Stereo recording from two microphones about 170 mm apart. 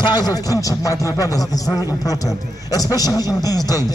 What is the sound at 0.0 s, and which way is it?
A man's voice, 25° left (ahead or behind).